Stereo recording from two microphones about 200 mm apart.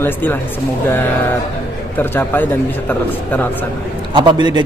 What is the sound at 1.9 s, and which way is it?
A man's voice, 10° left (ahead or behind).